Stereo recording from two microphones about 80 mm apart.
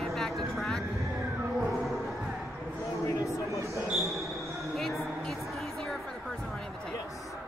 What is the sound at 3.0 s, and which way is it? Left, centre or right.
Speech, left.